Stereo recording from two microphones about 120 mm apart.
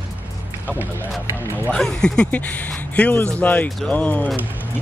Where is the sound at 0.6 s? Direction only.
15° right (ahead or behind).